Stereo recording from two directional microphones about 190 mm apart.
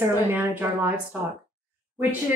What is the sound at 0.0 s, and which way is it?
A woman's voice, 10° right (ahead or behind).